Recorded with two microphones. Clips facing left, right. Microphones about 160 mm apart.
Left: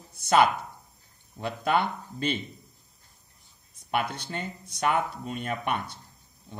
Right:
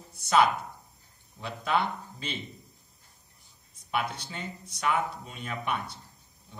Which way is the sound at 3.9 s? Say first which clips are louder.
Left 3 dB; 60° left (ahead or behind).